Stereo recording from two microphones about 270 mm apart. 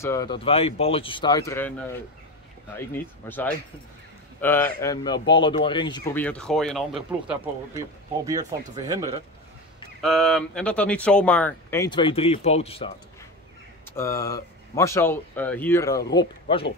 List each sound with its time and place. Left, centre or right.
0.0 s speech: centre
8.3 s speech: centre
10.0 s speech: centre; by 12.9 s left
13.9 s speech: centre